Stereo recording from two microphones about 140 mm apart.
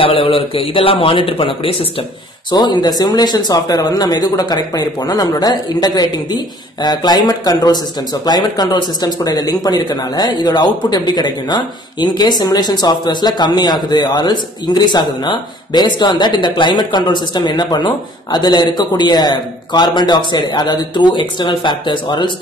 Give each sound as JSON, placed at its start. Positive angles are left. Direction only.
{"t": 0.0, "sound": "a man's voice", "side_deg": 40}
{"t": 2.5, "sound": "a man's voice", "side_deg": 30}